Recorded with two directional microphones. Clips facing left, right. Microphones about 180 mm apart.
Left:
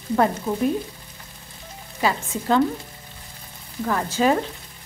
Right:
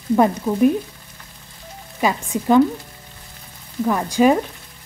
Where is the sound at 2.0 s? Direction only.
15° right (ahead or behind).